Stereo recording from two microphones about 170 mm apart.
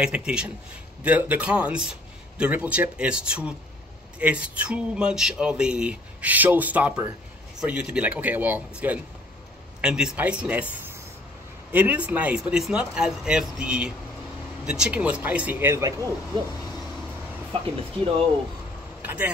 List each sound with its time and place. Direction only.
0.0 s speech: 5° right (ahead or behind)
11.7 s speech: 10° right (ahead or behind)
17.5 s speech: 30° right (ahead or behind)
19.0 s speech: 10° right (ahead or behind)